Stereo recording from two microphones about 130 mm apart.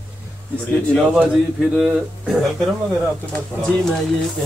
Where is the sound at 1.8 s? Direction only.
Centre (ahead or behind).